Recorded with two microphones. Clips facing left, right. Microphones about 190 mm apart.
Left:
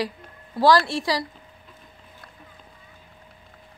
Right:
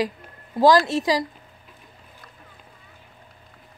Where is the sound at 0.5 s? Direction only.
15° right (ahead or behind).